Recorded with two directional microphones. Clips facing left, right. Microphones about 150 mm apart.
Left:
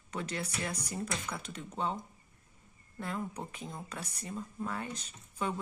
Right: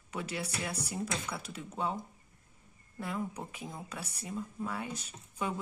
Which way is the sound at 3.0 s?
5° right (ahead or behind).